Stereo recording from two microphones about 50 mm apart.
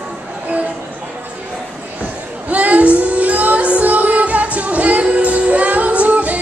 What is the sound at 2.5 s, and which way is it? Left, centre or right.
Music, right.